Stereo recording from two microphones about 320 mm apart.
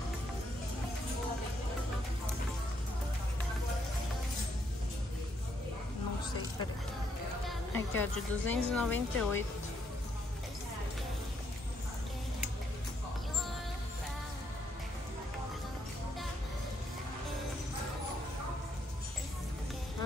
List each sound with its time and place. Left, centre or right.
7.4 s a woman's voice: centre